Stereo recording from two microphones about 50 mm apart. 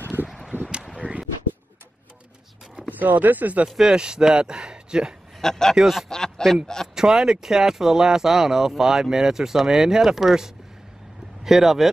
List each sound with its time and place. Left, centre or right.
0.5 s a sound: right
0.9 s a sound: right
2.9 s speech: right
3.6 s speech: centre
5.4 s a man's voice: centre
5.8 s speech: centre
6.0 s a man's voice: centre
7.0 s speech: centre